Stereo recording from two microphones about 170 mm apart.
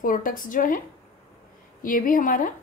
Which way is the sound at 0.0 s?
55° left (ahead or behind).